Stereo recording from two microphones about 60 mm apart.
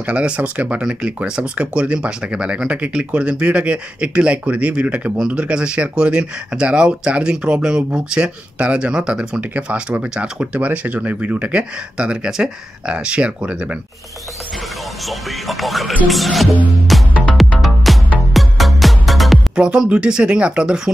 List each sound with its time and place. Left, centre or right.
0.0 s speech: right
10.4 s speech: right
15.0 s music: centre
19.5 s speech: centre